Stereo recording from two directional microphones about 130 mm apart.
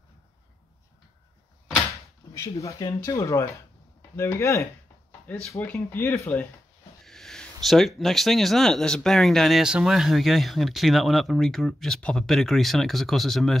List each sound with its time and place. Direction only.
2.3 s speech: 25° left (ahead or behind)
5.2 s speech: 10° left (ahead or behind)
7.1 s a sound: 5° left (ahead or behind)
7.6 s speech: centre (ahead or behind)